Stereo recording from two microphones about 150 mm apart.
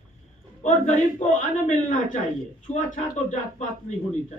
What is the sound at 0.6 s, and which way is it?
Speech, 55° left (ahead or behind).